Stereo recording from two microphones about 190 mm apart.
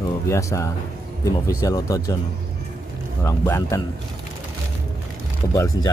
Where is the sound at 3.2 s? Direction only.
15° left (ahead or behind).